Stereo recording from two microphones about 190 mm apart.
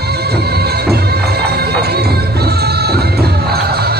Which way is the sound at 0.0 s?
55° right (ahead or behind).